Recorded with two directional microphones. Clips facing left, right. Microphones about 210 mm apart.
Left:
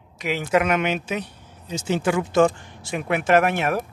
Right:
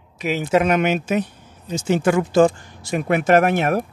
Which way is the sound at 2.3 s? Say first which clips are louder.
Right 3 dB; 35° right (ahead or behind).